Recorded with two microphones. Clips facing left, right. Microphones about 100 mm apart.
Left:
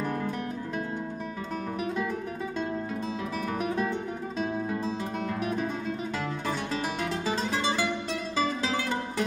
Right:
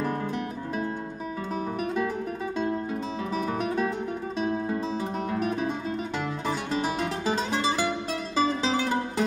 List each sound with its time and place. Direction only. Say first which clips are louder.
2.6 s music: right 4 dB; centre (ahead or behind)
4.4 s guitar: right 2 dB; centre (ahead or behind)
8.4 s music: right 4 dB; 15° right (ahead or behind)